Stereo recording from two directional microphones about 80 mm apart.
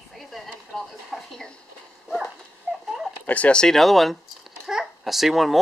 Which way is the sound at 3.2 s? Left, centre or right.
Centre.